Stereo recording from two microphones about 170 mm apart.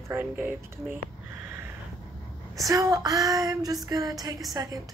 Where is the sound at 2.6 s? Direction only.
20° right (ahead or behind).